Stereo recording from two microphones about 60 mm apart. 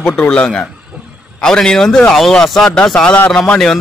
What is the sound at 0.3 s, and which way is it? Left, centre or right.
Speech, centre.